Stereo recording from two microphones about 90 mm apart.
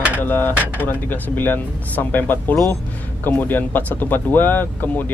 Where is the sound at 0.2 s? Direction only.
20° left (ahead or behind).